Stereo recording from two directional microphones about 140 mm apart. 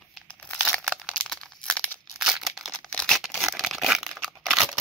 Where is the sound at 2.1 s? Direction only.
5° right (ahead or behind).